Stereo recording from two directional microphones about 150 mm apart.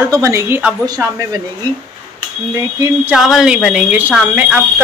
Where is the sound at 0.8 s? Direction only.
25° right (ahead or behind).